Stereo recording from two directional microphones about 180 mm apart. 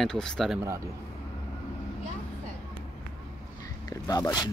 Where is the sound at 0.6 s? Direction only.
15° right (ahead or behind).